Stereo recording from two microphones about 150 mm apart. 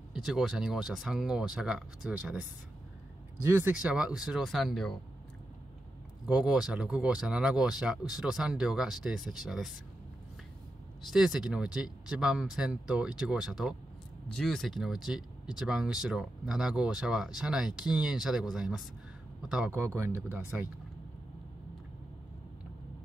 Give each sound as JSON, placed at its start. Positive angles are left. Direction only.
{"t": 0.1, "sound": "speech", "side_deg": 0}
{"t": 3.4, "sound": "speech", "side_deg": -15}
{"t": 6.2, "sound": "speech", "side_deg": -5}
{"t": 11.1, "sound": "speech", "side_deg": -5}